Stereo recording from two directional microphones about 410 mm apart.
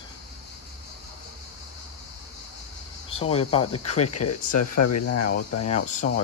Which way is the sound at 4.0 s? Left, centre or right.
Left.